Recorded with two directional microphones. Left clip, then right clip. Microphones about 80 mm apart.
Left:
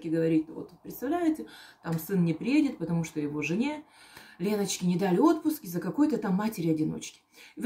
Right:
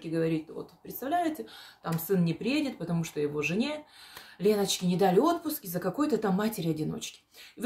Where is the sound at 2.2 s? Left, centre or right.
Right.